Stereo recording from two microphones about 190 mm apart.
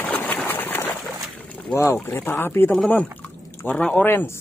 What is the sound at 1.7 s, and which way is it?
Speech, 10° left (ahead or behind).